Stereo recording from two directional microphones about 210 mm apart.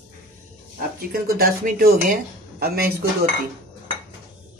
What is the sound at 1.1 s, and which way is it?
Speech, 45° right (ahead or behind).